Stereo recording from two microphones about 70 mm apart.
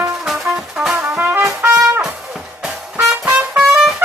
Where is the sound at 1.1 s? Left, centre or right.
Right.